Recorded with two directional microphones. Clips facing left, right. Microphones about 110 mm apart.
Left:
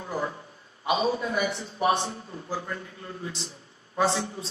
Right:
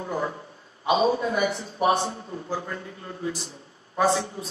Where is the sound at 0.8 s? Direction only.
30° right (ahead or behind).